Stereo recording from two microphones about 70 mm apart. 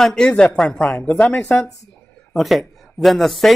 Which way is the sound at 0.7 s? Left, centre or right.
Left.